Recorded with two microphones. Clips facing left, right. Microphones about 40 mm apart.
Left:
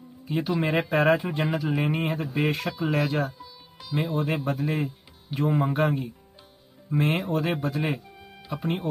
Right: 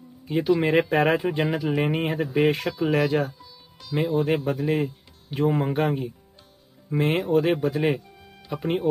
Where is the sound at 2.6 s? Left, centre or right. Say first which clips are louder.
Right 3 dB; centre.